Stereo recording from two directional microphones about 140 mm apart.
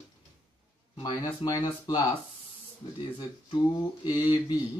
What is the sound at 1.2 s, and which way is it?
Speech, 30° left (ahead or behind).